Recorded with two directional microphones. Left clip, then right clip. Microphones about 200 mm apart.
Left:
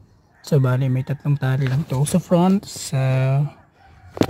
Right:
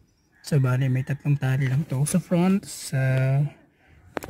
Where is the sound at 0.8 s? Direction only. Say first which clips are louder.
Left 3 dB; centre (ahead or behind).